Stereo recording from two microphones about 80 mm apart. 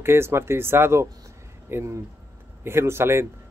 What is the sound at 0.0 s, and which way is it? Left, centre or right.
Speech, right.